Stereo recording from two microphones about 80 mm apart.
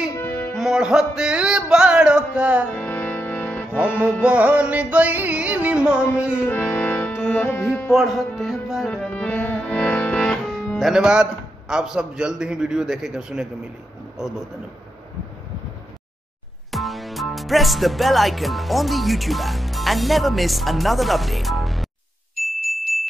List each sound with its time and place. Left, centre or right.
0.1 s music: left
0.6 s a man's voice: centre
2.7 s music: left
4.0 s a man's voice: centre
6.5 s music: left
7.9 s speech: centre
8.9 s music: centre
10.8 s a man's voice: centre
16.7 s music: centre